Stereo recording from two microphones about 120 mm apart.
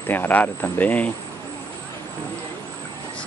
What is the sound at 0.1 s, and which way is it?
Speech, 15° left (ahead or behind).